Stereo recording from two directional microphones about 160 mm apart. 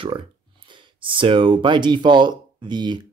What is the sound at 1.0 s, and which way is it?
Speech, 35° right (ahead or behind).